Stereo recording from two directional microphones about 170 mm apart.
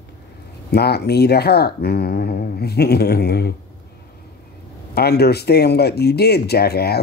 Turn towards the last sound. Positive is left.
turn(degrees=70)  # may be behind; listen again after turning